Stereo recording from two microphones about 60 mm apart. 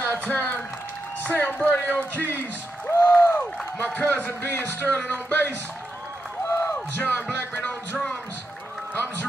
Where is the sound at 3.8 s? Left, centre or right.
Left.